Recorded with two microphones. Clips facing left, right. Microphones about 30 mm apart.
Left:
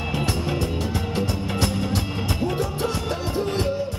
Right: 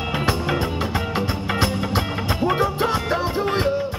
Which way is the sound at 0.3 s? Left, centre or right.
Right.